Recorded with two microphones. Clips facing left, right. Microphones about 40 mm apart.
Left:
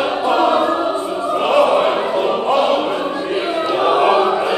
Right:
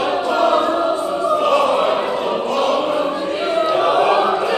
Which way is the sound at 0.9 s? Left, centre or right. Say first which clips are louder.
Right 1 dB; left.